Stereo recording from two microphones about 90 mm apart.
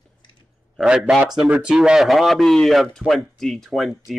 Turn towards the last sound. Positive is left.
turn(degrees=0)  # may be behind; listen again after turning